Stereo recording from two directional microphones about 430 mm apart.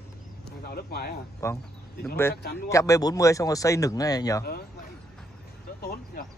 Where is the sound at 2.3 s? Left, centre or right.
Left.